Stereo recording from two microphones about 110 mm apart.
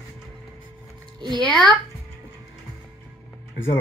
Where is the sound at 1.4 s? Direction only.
10° left (ahead or behind).